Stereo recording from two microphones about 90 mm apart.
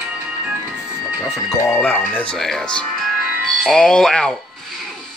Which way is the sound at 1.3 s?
30° left (ahead or behind).